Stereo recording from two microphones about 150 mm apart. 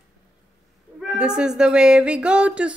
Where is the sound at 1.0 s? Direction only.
5° right (ahead or behind).